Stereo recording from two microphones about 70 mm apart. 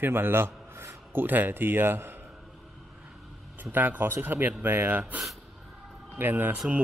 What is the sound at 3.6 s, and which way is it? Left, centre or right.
Speech, right.